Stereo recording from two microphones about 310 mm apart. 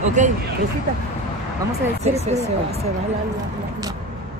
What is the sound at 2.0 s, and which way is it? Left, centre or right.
Speech, right.